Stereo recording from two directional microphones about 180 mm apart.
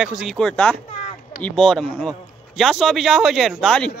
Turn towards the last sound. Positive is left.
turn(degrees=5)  # may be behind; listen again after turning